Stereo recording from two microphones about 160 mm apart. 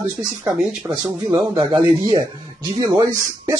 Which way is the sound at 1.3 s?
35° right (ahead or behind).